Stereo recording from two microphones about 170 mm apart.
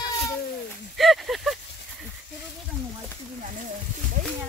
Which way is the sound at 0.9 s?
Centre (ahead or behind).